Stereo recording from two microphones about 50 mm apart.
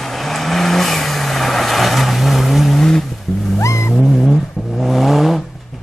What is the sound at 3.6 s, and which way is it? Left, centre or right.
Vehicle, left.